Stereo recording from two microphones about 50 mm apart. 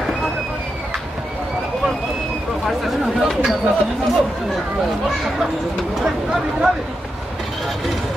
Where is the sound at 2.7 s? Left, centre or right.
Centre.